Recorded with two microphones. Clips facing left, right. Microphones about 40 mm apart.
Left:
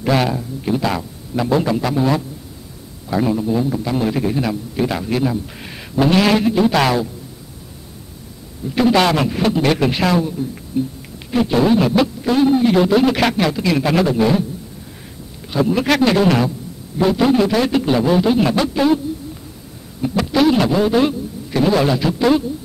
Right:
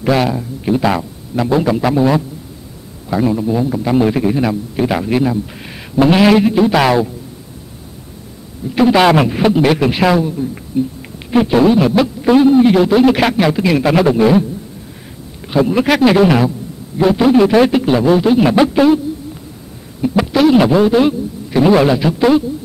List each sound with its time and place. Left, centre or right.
0.0 s a man's voice: centre
0.4 s a man's voice: centre
3.8 s a man's voice: centre
8.6 s a man's voice: centre
12.8 s a man's voice: centre
15.5 s a man's voice: centre
18.5 s speech: centre
20.0 s a man's voice: centre
21.6 s a man's voice: centre